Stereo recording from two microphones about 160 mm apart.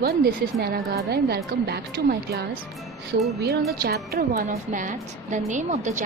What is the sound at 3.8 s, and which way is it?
Speech, 75° right (ahead or behind).